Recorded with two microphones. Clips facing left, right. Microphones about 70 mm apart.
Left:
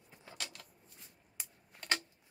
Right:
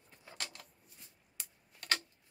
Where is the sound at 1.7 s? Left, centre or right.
Left.